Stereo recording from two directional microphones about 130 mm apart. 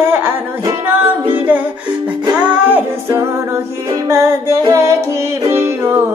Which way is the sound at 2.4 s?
15° right (ahead or behind).